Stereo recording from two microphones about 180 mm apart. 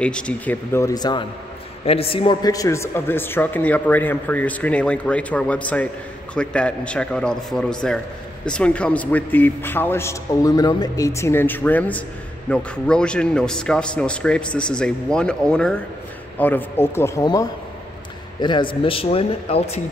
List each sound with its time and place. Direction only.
0.0 s a man's voice: 5° left (ahead or behind); by 19.8 s 35° left (ahead or behind)